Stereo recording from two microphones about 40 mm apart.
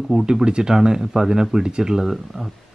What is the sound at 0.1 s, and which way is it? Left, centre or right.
Speech, centre.